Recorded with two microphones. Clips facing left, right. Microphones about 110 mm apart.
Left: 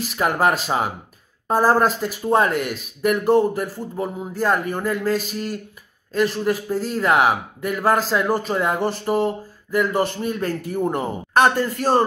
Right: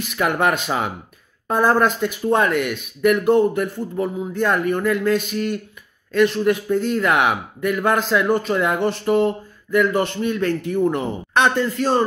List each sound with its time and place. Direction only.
0.0 s speech: 35° left (ahead or behind)